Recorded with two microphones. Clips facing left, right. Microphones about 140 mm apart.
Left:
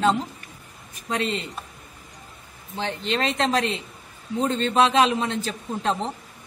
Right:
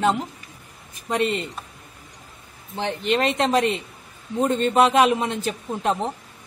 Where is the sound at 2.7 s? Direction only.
15° right (ahead or behind).